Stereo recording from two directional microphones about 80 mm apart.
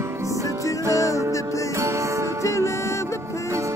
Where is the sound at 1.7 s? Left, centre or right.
Right.